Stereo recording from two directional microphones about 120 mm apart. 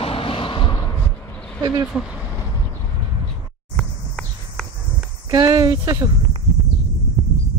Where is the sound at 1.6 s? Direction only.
35° right (ahead or behind).